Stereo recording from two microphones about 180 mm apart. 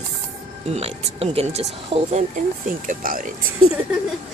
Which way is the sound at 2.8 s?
50° right (ahead or behind).